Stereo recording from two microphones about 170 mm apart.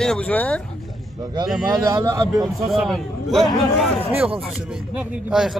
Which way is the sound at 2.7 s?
Centre (ahead or behind).